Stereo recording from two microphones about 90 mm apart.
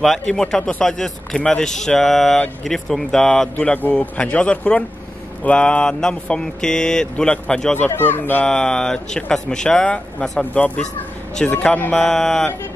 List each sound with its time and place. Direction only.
0.0 s a man's voice: 5° left (ahead or behind)
7.7 s speech: 20° left (ahead or behind)
8.5 s speech: 10° left (ahead or behind)
12.0 s a man's voice: 5° left (ahead or behind)